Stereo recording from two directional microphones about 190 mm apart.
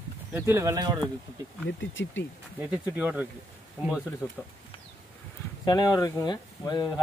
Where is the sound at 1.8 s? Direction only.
75° left (ahead or behind).